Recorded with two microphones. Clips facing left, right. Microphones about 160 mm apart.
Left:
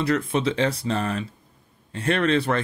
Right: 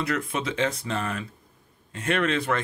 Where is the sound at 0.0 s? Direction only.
30° left (ahead or behind).